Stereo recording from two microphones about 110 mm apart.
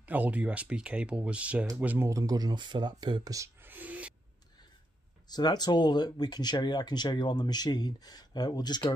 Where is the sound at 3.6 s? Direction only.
15° right (ahead or behind).